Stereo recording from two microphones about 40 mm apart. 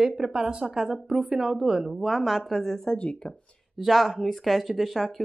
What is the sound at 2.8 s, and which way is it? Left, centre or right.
Speech, left.